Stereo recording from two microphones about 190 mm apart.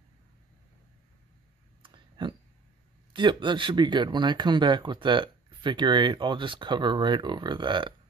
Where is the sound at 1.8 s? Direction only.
25° right (ahead or behind).